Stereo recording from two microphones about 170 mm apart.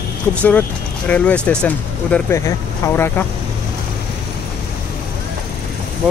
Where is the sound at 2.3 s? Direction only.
15° left (ahead or behind).